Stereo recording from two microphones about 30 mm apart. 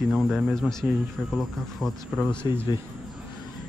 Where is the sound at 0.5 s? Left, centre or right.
Centre.